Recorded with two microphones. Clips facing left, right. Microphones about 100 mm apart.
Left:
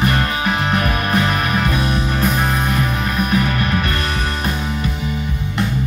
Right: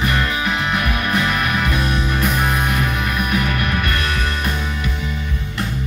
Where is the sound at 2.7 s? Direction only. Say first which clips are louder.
Left 1 dB; 30° left (ahead or behind).